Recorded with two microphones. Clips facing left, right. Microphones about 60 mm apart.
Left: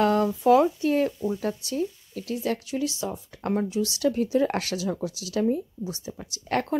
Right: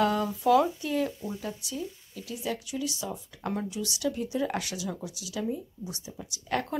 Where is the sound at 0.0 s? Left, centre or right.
Left.